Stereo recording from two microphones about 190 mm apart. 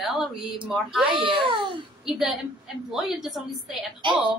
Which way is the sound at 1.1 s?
25° right (ahead or behind).